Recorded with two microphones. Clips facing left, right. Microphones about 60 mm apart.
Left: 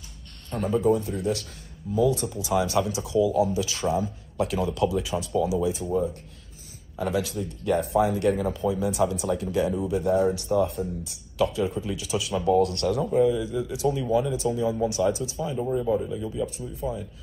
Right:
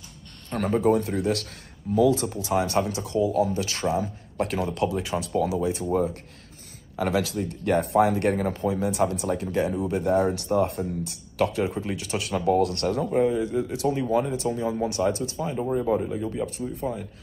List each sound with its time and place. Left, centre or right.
0.5 s speech: right